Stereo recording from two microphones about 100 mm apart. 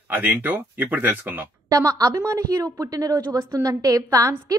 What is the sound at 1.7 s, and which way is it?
A woman's voice, 35° right (ahead or behind).